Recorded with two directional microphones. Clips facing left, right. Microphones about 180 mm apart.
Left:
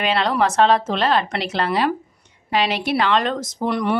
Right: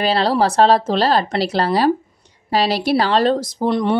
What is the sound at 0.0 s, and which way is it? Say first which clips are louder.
A woman's voice: right 3 dB; 35° right (ahead or behind).